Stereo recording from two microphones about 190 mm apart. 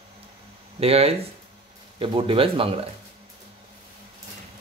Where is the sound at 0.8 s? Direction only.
30° right (ahead or behind).